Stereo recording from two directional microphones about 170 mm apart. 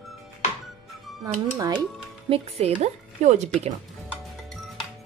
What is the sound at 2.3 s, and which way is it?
Speech, 40° right (ahead or behind).